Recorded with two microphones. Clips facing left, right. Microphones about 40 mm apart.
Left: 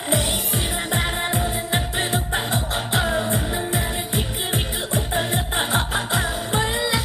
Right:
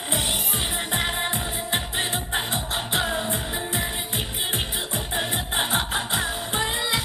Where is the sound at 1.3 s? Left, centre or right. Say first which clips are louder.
Left 4 dB; left.